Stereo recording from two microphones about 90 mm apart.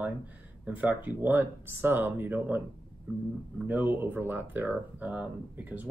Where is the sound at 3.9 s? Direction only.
20° right (ahead or behind).